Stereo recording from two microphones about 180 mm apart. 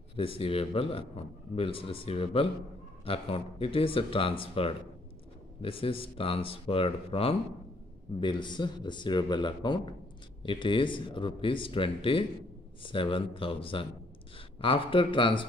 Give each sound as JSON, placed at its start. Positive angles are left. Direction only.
{"t": 0.1, "sound": "a man's voice", "side_deg": 30}